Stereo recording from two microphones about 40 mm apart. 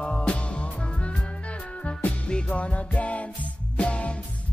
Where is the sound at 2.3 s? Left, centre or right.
Left.